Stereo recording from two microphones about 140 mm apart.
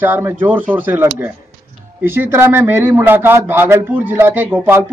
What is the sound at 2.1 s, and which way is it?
A man's voice, 15° right (ahead or behind).